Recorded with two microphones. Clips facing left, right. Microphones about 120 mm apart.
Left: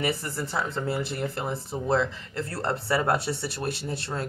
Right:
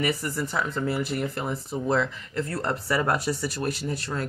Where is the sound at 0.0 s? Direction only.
30° left (ahead or behind).